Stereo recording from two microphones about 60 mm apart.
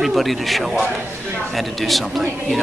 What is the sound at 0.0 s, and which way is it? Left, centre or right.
A man's voice, centre.